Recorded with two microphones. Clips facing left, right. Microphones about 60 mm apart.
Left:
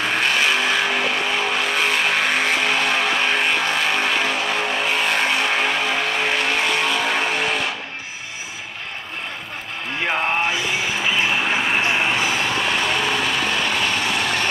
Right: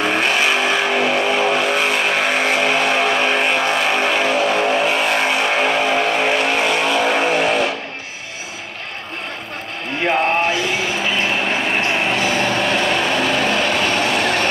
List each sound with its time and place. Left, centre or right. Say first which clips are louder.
0.0 s vehicle: right 3 dB; centre
11.1 s vehicle: right 1 dB; centre
13.4 s vehicle: right 4 dB; right
14.2 s a sound: right 4 dB; right